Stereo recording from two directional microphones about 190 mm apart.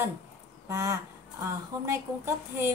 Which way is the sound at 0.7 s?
15° right (ahead or behind).